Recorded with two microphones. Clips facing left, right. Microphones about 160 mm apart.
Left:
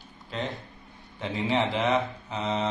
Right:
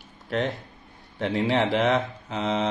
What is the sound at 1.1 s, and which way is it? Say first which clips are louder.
Speech: right 4 dB; 85° right.